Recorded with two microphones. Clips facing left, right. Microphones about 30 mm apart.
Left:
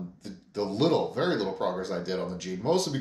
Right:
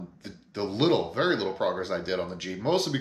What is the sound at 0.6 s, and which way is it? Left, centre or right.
Speech, right.